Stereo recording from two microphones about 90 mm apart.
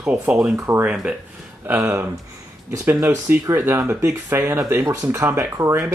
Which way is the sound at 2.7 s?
35° right (ahead or behind).